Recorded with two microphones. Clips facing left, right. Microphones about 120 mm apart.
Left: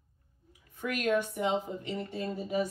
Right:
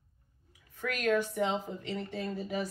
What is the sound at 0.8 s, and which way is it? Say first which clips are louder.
Speech: even; 20° left (ahead or behind).